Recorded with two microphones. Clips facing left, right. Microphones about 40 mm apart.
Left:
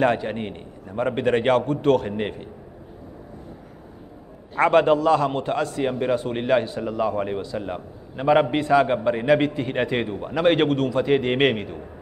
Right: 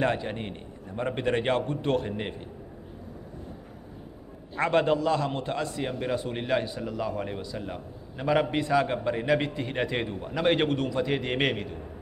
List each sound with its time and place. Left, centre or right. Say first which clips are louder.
0.0 s a man's voice: left 6 dB; centre
0.9 s a man's voice: left 6 dB; left
1.7 s a man's voice: left 8 dB; left
2.0 s a man's voice: left 6 dB; left
4.6 s a man's voice: left 7 dB; left
5.8 s a man's voice: left 7 dB; centre